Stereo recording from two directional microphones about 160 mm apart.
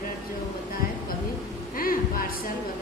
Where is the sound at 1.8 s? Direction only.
65° left (ahead or behind).